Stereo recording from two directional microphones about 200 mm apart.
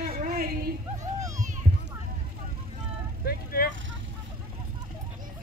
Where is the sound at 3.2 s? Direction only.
50° left (ahead or behind).